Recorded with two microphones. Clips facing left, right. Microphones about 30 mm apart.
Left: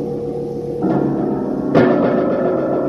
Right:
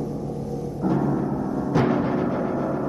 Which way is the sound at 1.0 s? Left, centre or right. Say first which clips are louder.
Left 6 dB; centre.